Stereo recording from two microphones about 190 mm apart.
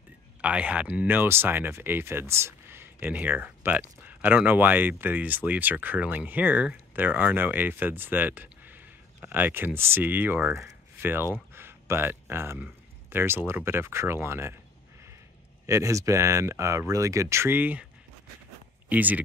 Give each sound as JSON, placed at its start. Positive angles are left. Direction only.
{"t": 0.4, "sound": "speech", "side_deg": -5}
{"t": 15.6, "sound": "speech", "side_deg": -15}
{"t": 18.9, "sound": "speech", "side_deg": -10}